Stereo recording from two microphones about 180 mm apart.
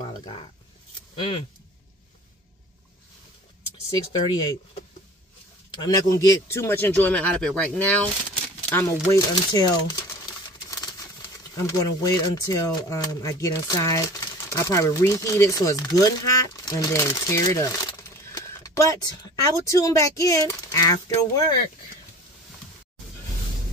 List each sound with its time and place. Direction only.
0.2 s speech: 30° left (ahead or behind)
4.1 s speech: 25° left (ahead or behind)
5.8 s speech: 20° left (ahead or behind)
10.7 s typewriter: 20° left (ahead or behind)
11.6 s speech: 20° left (ahead or behind)
18.3 s a sound: 20° left (ahead or behind)
19.6 s speech: 20° left (ahead or behind)